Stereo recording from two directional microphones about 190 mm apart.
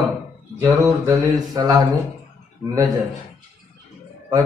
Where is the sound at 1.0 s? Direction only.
20° right (ahead or behind).